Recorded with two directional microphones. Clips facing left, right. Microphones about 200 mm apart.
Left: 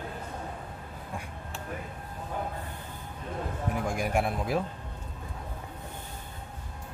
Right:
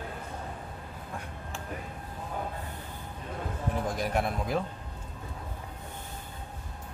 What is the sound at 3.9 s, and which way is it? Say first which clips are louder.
Speech: left 2 dB; 10° left (ahead or behind).